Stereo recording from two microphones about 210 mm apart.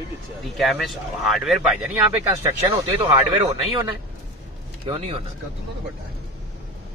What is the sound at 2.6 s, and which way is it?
Speech, 30° right (ahead or behind).